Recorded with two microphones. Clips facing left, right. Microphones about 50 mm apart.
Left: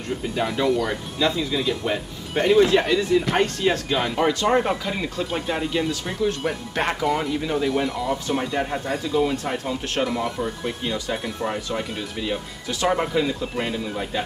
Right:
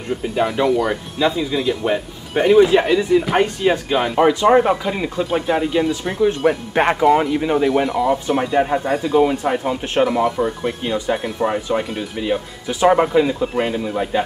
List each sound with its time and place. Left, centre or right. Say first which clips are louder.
0.1 s speech: right 5 dB; centre